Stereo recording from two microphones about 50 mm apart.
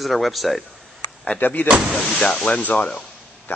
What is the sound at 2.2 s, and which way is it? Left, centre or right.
Speech, left.